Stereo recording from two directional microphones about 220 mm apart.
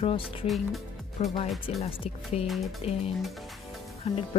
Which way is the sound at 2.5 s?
Centre (ahead or behind).